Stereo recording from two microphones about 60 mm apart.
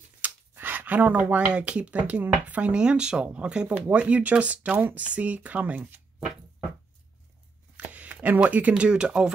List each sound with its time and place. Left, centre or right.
0.2 s speech: right
4.7 s speech: right
7.7 s speech: right